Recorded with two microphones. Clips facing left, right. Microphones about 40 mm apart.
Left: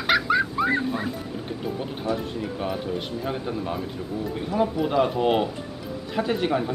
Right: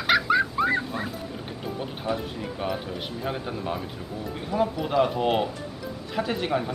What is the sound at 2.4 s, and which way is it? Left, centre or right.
Speech, centre.